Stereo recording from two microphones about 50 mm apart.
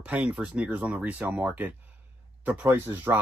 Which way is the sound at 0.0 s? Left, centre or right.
Right.